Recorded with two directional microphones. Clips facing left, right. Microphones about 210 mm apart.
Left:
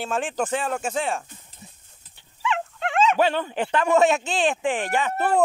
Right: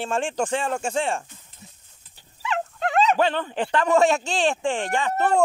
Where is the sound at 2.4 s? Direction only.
40° right (ahead or behind).